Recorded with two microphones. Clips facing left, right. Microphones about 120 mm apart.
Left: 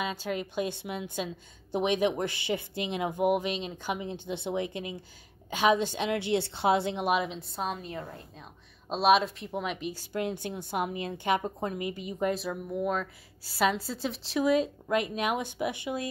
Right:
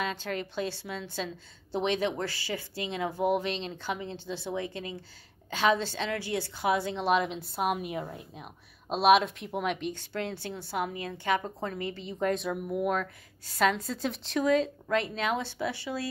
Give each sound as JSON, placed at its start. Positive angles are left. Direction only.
{"t": 0.0, "sound": "a woman's voice", "side_deg": 10}
{"t": 7.1, "sound": "a woman's voice", "side_deg": 5}
{"t": 8.9, "sound": "speech", "side_deg": 0}
{"t": 10.1, "sound": "a woman's voice", "side_deg": 15}
{"t": 13.0, "sound": "a woman's voice", "side_deg": 5}